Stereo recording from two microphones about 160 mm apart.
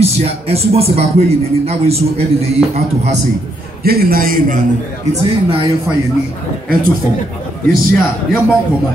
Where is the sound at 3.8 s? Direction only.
70° right (ahead or behind).